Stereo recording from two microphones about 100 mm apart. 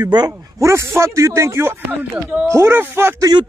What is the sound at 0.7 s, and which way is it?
Speech, 30° right (ahead or behind).